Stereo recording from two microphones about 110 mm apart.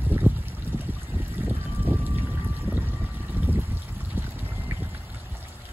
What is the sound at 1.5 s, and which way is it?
Boat, 15° right (ahead or behind).